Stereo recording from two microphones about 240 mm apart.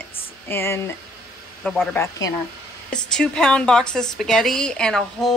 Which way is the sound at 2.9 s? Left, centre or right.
Centre.